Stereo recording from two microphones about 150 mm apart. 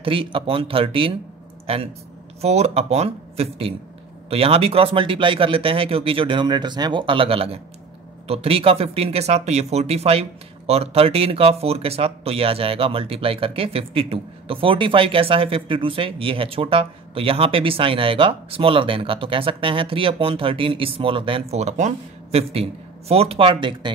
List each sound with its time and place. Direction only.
0.0 s speech: 35° right (ahead or behind)
2.4 s speech: 45° right (ahead or behind)